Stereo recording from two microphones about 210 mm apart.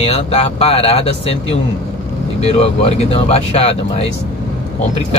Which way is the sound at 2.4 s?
30° left (ahead or behind).